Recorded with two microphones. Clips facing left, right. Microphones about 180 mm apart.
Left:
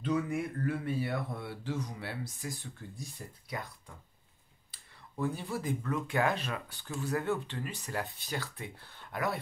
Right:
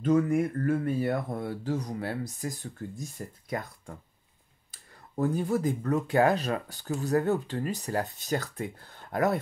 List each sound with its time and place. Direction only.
0.0 s speech: 45° right (ahead or behind)